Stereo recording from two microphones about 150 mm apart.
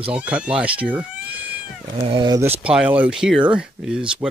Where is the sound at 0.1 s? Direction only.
10° right (ahead or behind).